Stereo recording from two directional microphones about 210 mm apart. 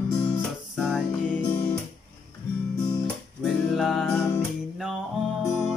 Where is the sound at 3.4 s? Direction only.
Centre (ahead or behind).